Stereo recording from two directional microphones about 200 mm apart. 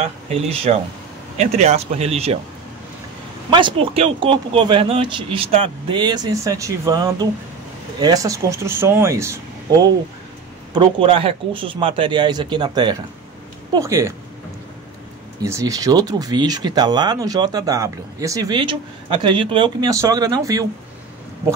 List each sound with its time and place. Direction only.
0.3 s speech: 30° right (ahead or behind)
3.4 s speech: 25° right (ahead or behind)
15.4 s speech: 15° right (ahead or behind)